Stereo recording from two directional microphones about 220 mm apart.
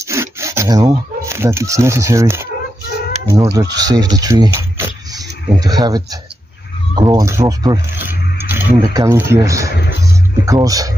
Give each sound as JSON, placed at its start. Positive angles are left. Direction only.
{"t": 0.0, "sound": "filing", "side_deg": -10}
{"t": 3.3, "sound": "speech", "side_deg": -15}